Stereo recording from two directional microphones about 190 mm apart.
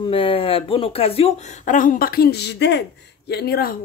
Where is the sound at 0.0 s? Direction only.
30° left (ahead or behind).